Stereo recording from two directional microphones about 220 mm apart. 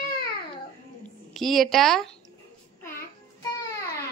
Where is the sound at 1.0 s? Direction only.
Centre (ahead or behind).